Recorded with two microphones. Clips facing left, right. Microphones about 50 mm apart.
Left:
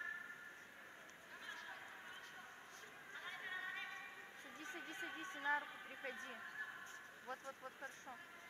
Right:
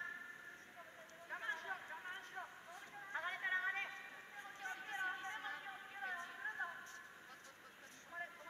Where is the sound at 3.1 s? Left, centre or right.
Right.